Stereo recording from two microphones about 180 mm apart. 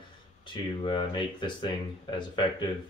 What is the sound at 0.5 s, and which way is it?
Speech, 25° left (ahead or behind).